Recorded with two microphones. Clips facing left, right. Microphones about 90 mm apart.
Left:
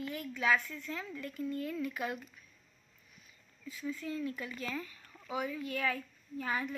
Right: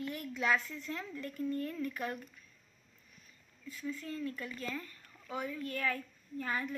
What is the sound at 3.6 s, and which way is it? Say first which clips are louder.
Speech: left 2 dB; 15° left (ahead or behind).